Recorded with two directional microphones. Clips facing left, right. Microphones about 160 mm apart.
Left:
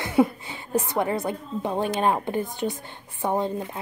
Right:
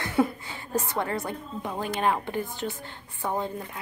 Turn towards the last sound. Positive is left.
turn(degrees=20)  # may be behind; listen again after turning